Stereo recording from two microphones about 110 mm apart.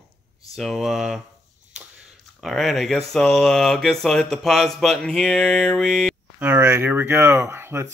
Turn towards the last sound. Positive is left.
turn(degrees=-20)  # may be behind; listen again after turning